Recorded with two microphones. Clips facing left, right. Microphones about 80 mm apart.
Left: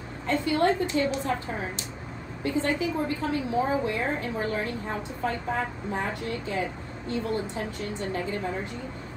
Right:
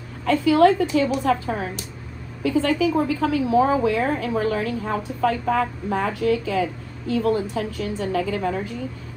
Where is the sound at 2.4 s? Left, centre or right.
Right.